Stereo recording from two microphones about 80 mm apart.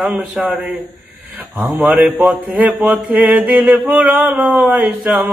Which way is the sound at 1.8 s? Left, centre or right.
Centre.